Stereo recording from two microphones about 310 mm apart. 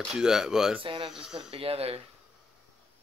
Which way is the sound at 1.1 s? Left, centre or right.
Centre.